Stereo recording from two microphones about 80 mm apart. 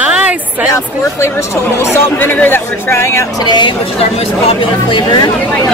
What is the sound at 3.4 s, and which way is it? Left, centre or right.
Speech, left.